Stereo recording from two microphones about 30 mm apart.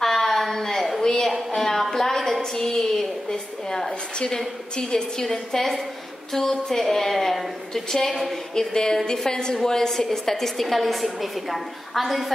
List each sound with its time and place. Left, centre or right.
0.0 s a sound: centre
2.5 s a woman's voice: centre
5.2 s a woman's voice: centre